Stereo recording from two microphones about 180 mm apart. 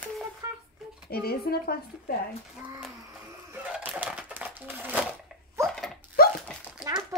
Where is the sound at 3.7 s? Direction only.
10° right (ahead or behind).